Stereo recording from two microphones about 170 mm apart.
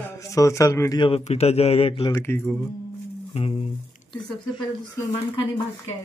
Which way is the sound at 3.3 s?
35° left (ahead or behind).